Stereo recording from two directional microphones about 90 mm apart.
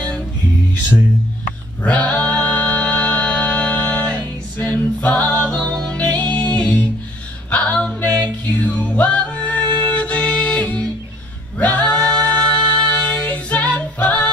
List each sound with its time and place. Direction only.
1.8 s music: 15° left (ahead or behind)
7.5 s a sound: 15° left (ahead or behind)
8.6 s music: 15° left (ahead or behind)
11.5 s female singing: 15° left (ahead or behind)